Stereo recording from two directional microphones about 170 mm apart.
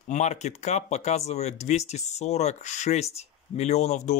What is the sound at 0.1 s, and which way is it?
Speech, 45° left (ahead or behind).